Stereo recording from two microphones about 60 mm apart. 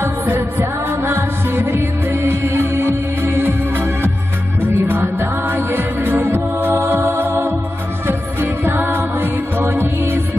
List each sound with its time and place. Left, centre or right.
0.0 s music: right